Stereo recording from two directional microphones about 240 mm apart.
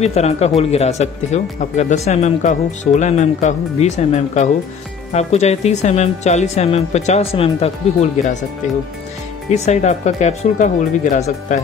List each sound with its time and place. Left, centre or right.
0.0 s speech: left
9.5 s speech: left